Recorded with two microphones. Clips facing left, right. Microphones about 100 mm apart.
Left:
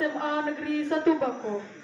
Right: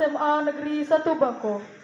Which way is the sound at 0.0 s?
30° right (ahead or behind).